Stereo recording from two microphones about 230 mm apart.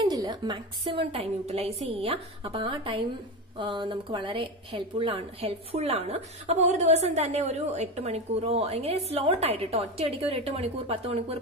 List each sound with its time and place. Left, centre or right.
0.0 s a woman's voice: centre